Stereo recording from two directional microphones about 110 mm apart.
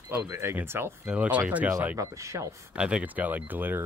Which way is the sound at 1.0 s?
10° right (ahead or behind).